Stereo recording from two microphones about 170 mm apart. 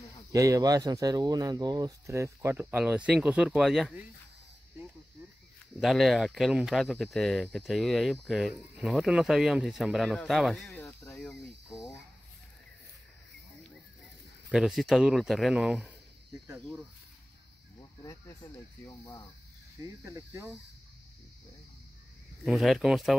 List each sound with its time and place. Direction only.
0.3 s speech: 20° right (ahead or behind); by 4.0 s centre (ahead or behind)
5.8 s speech: centre (ahead or behind)
10.8 s a sound: 15° left (ahead or behind)
14.5 s speech: centre (ahead or behind)
17.7 s speech: 20° left (ahead or behind)
19.8 s speech: 15° right (ahead or behind)
22.4 s speech: centre (ahead or behind)